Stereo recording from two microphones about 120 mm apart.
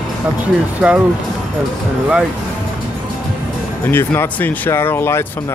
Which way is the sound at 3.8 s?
20° left (ahead or behind).